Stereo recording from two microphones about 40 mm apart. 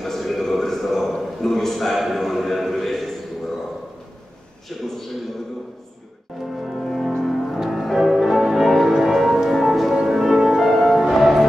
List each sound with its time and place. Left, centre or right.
0.0 s a sound: centre
6.4 s music: centre
8.5 s change ringing: centre
8.9 s music: centre